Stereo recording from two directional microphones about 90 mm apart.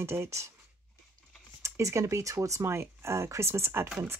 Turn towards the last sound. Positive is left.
turn(degrees=-30)  # may be behind; listen again after turning